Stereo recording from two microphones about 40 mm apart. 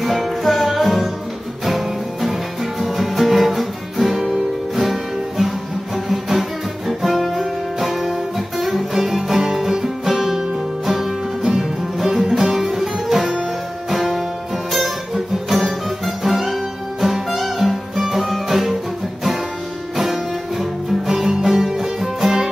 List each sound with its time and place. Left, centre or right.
0.0 s music: centre
2.8 s music: centre
6.9 s guitar: centre
8.5 s music: centre
11.4 s music: centre
21.1 s music: centre